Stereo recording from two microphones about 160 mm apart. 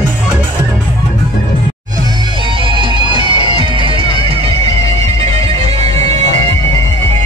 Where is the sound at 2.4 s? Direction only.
30° right (ahead or behind).